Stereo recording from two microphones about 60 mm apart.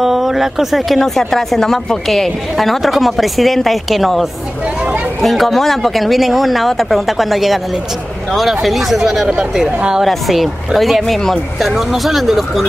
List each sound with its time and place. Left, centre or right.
0.0 s speech: centre
9.7 s a woman's voice: centre
10.0 s speech: centre